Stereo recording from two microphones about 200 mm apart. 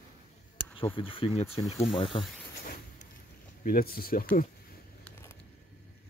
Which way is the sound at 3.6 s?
45° left (ahead or behind).